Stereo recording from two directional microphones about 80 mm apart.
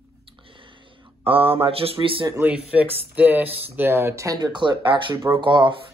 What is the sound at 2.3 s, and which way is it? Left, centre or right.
Speech, centre.